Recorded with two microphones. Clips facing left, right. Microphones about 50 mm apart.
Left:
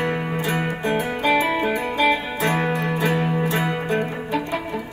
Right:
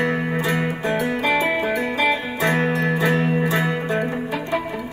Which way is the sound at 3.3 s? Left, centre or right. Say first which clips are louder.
Right 2 dB; right.